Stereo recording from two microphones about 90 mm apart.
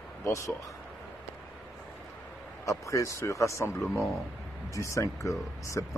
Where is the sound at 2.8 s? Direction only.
35° left (ahead or behind).